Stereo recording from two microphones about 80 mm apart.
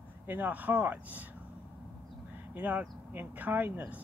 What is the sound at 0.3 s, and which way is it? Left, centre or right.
Speech, right.